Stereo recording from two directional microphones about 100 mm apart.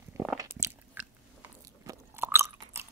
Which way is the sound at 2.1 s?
25° right (ahead or behind).